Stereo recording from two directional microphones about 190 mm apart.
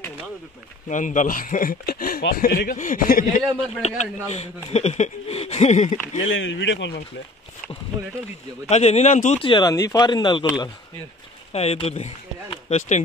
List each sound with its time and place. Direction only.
0.8 s speech: 40° left (ahead or behind)
3.8 s speech: 35° left (ahead or behind)
6.2 s speech: 85° left; by 7.0 s 70° left (ahead or behind)
8.6 s speech: 35° left (ahead or behind)